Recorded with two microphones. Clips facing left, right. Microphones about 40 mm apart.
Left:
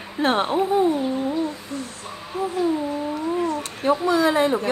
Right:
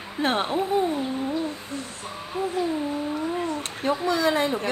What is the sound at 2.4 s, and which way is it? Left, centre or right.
Music, right.